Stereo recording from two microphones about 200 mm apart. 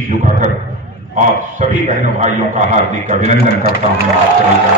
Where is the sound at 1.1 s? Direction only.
35° right (ahead or behind).